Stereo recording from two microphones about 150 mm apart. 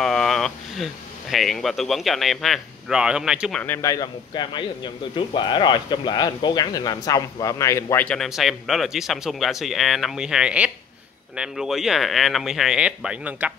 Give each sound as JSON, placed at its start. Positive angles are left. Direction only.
{"t": 0.0, "sound": "a sound", "side_deg": 5}
{"t": 1.3, "sound": "speech", "side_deg": 0}
{"t": 3.5, "sound": "a man's voice", "side_deg": 15}